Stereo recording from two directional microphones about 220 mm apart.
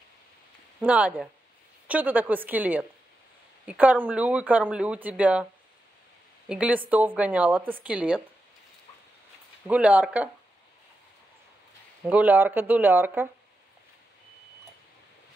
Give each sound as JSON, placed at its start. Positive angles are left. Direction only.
{"t": 0.7, "sound": "speech", "side_deg": -5}
{"t": 6.5, "sound": "speech", "side_deg": -5}
{"t": 9.7, "sound": "speech", "side_deg": -5}
{"t": 12.1, "sound": "speech", "side_deg": -10}